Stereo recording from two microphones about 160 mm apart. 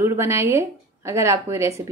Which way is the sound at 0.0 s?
15° right (ahead or behind).